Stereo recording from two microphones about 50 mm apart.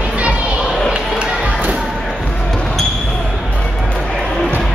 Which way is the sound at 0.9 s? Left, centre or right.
Right.